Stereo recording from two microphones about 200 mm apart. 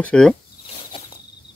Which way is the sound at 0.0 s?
5° left (ahead or behind).